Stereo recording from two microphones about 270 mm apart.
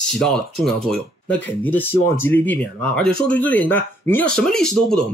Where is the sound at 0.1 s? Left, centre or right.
Centre.